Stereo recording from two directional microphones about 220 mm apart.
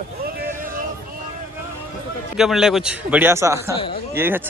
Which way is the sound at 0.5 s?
40° right (ahead or behind).